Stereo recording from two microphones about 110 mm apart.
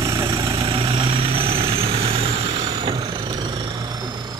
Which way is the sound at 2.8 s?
40° right (ahead or behind).